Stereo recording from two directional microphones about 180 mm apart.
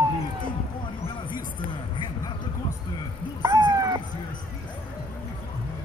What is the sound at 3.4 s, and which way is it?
Cat, 20° right (ahead or behind).